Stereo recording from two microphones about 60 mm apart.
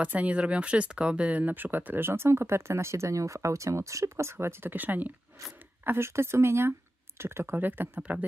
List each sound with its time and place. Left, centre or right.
0.0 s speech: right
5.9 s speech: right
7.5 s speech: right